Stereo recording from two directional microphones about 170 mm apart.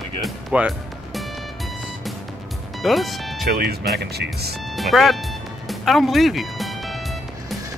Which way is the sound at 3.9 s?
70° right (ahead or behind).